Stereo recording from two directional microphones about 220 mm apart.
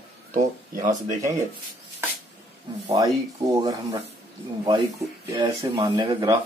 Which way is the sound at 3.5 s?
15° right (ahead or behind).